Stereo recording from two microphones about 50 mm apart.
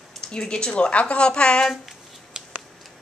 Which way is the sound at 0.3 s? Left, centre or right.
Centre.